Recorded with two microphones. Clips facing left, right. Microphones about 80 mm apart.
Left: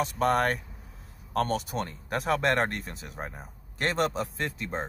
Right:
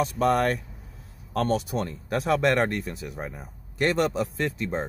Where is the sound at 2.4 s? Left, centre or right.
Left.